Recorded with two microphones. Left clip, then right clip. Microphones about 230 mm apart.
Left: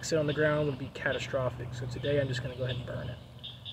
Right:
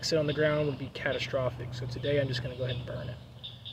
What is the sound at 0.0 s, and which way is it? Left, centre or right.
Speech, centre.